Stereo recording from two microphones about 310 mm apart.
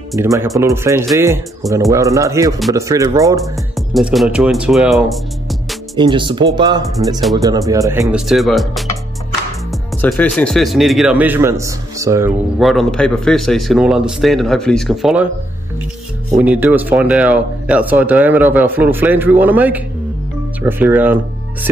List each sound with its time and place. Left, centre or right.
0.2 s speech: centre
3.7 s speech: centre
5.9 s speech: centre
16.3 s speech: centre